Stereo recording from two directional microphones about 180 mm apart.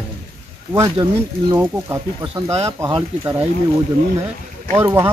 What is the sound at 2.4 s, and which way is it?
Speech, 35° right (ahead or behind).